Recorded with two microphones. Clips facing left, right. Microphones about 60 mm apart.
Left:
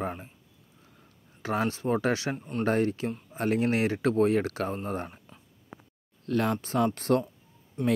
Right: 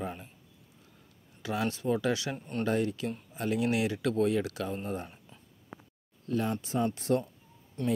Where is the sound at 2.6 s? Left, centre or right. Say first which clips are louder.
Left 3 dB; left.